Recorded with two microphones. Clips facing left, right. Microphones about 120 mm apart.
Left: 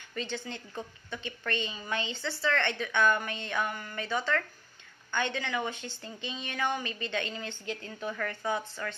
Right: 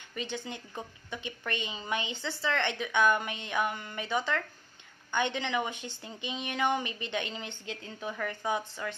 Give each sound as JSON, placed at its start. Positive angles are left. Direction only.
{"t": 0.1, "sound": "a woman's voice", "side_deg": -15}